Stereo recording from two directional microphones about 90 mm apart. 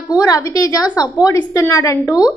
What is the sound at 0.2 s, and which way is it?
A woman's voice, 40° left (ahead or behind).